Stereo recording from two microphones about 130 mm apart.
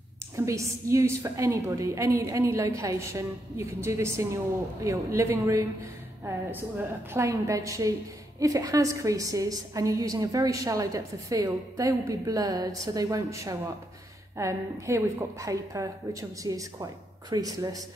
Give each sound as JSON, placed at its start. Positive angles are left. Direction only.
{"t": 0.5, "sound": "a woman's voice", "side_deg": -25}
{"t": 7.2, "sound": "a woman's voice", "side_deg": -25}